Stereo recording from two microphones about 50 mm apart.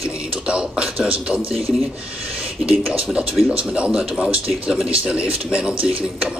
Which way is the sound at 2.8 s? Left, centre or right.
Centre.